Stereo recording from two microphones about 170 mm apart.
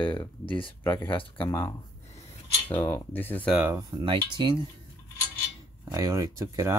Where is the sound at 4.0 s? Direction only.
30° right (ahead or behind).